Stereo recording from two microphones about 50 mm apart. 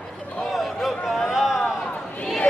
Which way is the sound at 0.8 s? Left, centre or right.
Centre.